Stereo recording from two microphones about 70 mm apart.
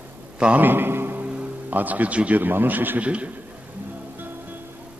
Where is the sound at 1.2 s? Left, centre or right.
Centre.